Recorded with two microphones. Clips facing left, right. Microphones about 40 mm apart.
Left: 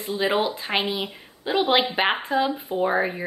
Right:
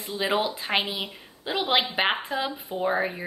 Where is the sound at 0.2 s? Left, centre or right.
Centre.